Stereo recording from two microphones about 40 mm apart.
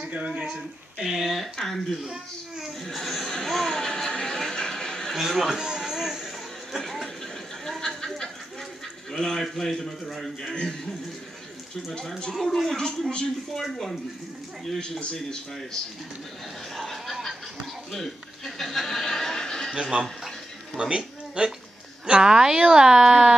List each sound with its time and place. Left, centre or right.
0.5 s speech: centre
1.3 s a man's voice: centre
2.8 s a sound: centre
5.1 s speech: centre
5.9 s music: centre
6.8 s a sound: centre
9.1 s a man's voice: centre
10.5 s a man's voice: centre
12.2 s a man's voice: centre
12.4 s speech: centre
12.7 s a man's voice: centre
16.7 s a sound: centre
17.9 s chuckle: centre
19.7 s speech: centre